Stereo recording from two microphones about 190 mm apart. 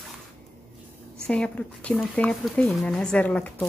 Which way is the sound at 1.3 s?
5° left (ahead or behind).